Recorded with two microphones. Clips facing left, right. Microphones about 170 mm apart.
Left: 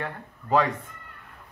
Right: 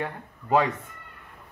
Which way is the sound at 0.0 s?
10° right (ahead or behind).